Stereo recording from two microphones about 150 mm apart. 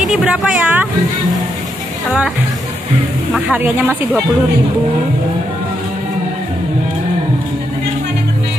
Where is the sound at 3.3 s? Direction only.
10° right (ahead or behind).